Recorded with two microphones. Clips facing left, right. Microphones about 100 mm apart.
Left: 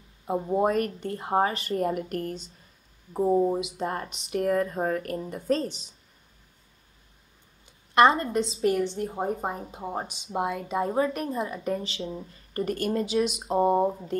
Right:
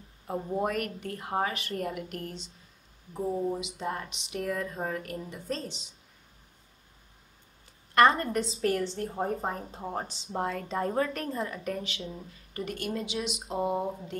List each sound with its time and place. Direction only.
0.5 s speech: 30° left (ahead or behind); by 3.6 s 55° left (ahead or behind)
3.7 s speech: 45° left (ahead or behind)
7.9 s a woman's voice: 20° left (ahead or behind)
11.1 s speech: 20° left (ahead or behind)
11.8 s speech: 30° left (ahead or behind)
12.5 s speech: 45° left (ahead or behind)